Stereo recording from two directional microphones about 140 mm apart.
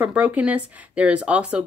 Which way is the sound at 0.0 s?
10° right (ahead or behind).